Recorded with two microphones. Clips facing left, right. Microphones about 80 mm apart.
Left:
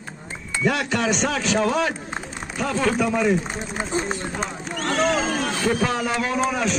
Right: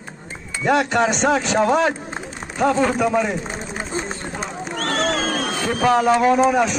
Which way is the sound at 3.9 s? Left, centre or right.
Centre.